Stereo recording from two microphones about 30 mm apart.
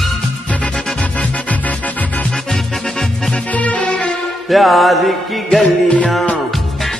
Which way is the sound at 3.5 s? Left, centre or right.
Left.